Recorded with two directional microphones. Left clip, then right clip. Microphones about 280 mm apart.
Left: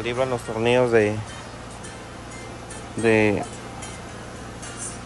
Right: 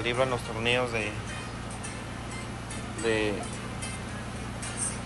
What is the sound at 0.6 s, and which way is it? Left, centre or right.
Speech, left.